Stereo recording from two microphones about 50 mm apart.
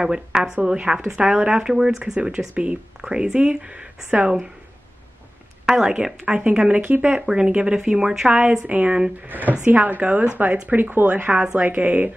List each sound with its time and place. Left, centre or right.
0.0 s speech: centre
2.1 s speech: right
5.7 s speech: centre
8.3 s speech: right
10.3 s speech: right
11.1 s speech: right